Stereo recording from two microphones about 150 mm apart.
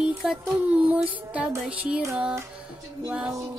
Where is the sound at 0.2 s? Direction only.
5° right (ahead or behind).